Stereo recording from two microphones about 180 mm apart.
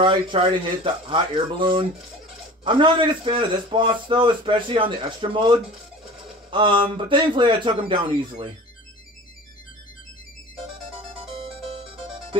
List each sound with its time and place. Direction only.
0.0 s a man's voice: 25° right (ahead or behind)